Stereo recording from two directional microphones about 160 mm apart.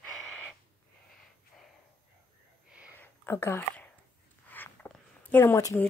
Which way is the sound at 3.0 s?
15° left (ahead or behind).